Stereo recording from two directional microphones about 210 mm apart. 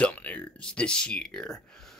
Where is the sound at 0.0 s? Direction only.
5° left (ahead or behind).